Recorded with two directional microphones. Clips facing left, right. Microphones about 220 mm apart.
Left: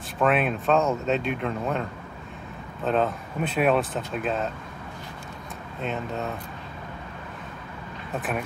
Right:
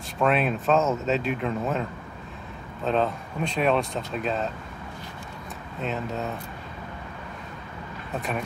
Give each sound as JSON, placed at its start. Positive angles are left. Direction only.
{"t": 0.2, "sound": "speech", "side_deg": 0}
{"t": 5.8, "sound": "speech", "side_deg": 0}